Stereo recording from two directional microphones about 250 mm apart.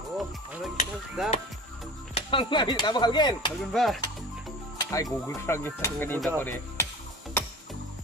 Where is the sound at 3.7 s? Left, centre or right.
Centre.